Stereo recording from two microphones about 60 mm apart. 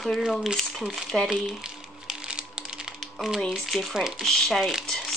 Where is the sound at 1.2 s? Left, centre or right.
Centre.